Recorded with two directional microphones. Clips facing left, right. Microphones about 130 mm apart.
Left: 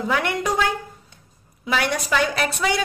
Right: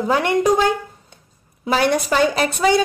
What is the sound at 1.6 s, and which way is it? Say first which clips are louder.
A woman's voice: right 6 dB; 35° right (ahead or behind).